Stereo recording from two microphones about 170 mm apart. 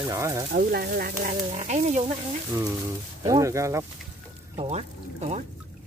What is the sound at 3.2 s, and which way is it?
Speech, 20° right (ahead or behind).